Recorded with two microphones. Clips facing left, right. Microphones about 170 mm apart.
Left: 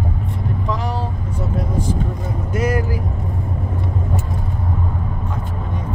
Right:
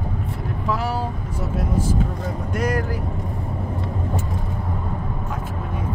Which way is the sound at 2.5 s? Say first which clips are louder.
Left 3 dB; 5° left (ahead or behind).